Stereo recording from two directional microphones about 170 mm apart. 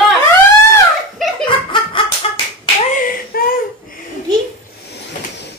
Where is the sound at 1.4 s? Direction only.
30° left (ahead or behind).